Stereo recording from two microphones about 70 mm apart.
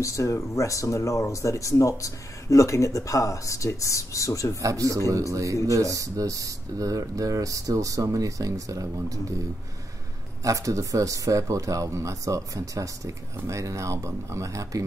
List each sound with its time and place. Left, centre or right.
0.0 s speech: left
4.6 s speech: right
10.4 s speech: right